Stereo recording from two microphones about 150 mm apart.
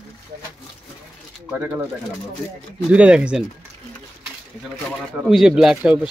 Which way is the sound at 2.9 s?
5° right (ahead or behind).